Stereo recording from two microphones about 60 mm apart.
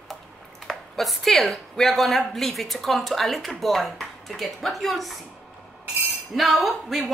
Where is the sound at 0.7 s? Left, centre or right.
Centre.